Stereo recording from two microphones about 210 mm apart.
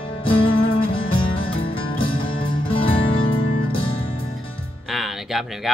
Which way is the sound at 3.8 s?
25° left (ahead or behind).